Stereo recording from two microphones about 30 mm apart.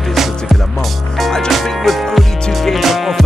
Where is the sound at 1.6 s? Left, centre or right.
Centre.